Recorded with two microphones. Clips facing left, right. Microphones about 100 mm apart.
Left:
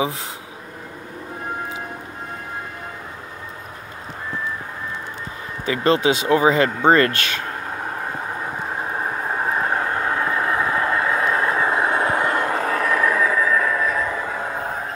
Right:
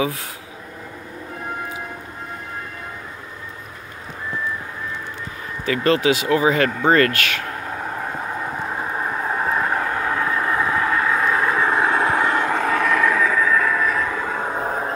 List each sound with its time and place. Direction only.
5.7 s speech: 25° left (ahead or behind)
9.6 s vehicle: 20° left (ahead or behind)
12.3 s vehicle: 40° left (ahead or behind)
13.0 s train: 15° left (ahead or behind)
14.0 s a sound: 5° left (ahead or behind)
14.4 s music: 25° right (ahead or behind)